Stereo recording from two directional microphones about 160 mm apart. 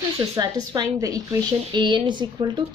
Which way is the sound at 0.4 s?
25° right (ahead or behind).